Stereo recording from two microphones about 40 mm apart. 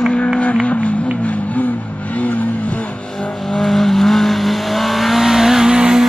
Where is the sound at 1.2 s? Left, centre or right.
Left.